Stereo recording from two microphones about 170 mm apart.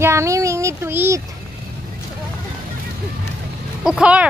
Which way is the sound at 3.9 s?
5° right (ahead or behind).